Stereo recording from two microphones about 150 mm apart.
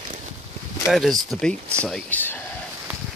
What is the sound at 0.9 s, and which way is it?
Speech, centre (ahead or behind).